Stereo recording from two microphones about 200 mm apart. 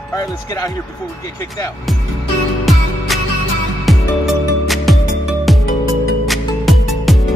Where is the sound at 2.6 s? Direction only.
Centre (ahead or behind).